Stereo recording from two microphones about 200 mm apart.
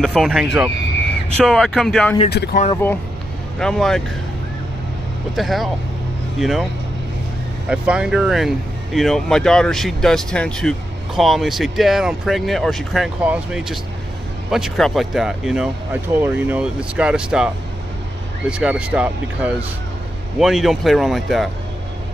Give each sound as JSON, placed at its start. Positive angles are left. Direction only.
{"t": 0.0, "sound": "speech", "side_deg": 0}
{"t": 2.3, "sound": "speech", "side_deg": 55}
{"t": 3.5, "sound": "speech", "side_deg": 5}
{"t": 5.3, "sound": "speech", "side_deg": 0}
{"t": 7.6, "sound": "speech", "side_deg": -5}
{"t": 18.5, "sound": "speech", "side_deg": -5}